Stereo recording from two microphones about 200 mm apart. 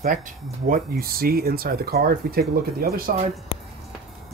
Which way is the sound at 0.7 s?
45° right (ahead or behind).